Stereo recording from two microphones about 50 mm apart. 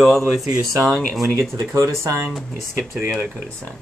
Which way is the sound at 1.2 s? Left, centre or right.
Right.